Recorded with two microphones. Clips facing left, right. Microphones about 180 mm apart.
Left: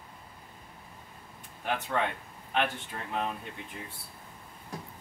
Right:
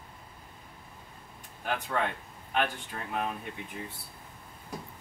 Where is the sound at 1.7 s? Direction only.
Centre (ahead or behind).